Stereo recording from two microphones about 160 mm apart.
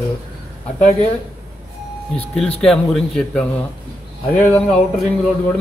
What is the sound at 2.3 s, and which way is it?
A man's voice, 5° left (ahead or behind).